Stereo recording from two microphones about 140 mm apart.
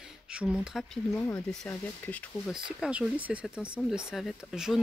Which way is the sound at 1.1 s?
20° left (ahead or behind).